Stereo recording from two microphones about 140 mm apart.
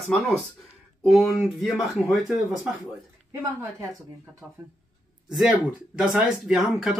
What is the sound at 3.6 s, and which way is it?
Speech, 20° right (ahead or behind).